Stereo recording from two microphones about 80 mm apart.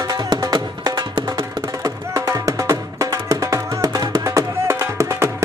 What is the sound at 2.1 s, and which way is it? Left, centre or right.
Music, right.